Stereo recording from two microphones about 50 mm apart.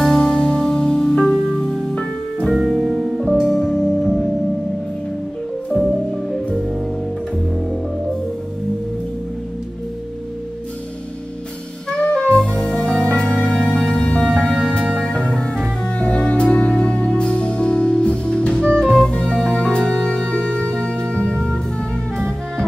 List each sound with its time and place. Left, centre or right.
0.0 s music: centre
2.5 s music: centre
5.7 s music: centre
12.1 s music: centre